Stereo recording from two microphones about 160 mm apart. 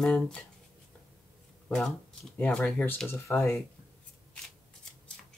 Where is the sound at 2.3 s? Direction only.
10° left (ahead or behind).